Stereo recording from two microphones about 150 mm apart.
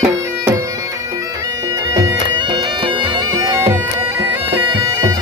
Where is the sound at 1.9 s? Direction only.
30° right (ahead or behind).